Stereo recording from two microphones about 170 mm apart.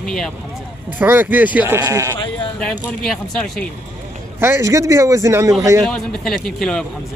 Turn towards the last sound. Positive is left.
turn(degrees=5)  # may be behind; listen again after turning